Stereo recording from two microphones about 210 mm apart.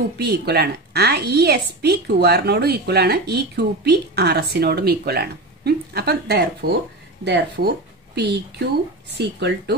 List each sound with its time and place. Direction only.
0.2 s a woman's voice: 50° right (ahead or behind)